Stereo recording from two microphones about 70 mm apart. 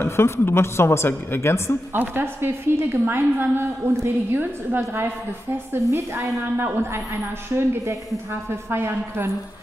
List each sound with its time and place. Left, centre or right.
0.0 s a woman's voice: left
2.0 s a woman's voice: right
4.4 s a woman's voice: right
5.7 s a woman's voice: right
6.4 s a woman's voice: right
7.5 s a woman's voice: right